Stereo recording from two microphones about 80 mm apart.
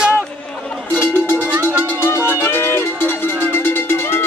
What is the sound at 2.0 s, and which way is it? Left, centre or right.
Music, left.